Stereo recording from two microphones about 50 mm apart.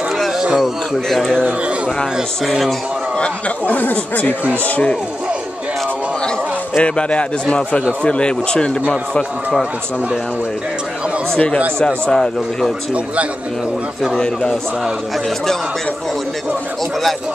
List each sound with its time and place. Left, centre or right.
1.0 s speech: centre
3.2 s speech: left
6.8 s speech: left
11.8 s speech: centre
12.9 s a man's voice: right
14.1 s speech: centre